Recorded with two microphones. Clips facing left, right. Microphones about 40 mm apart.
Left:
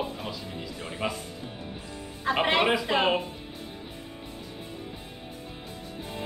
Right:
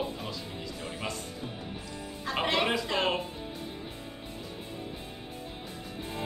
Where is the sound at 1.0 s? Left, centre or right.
Left.